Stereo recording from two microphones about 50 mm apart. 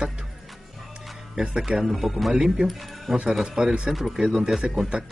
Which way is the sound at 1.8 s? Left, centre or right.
Centre.